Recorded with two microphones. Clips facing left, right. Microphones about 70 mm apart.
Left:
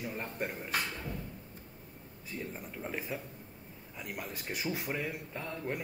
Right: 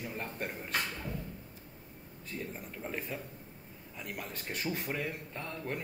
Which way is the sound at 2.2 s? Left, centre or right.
Centre.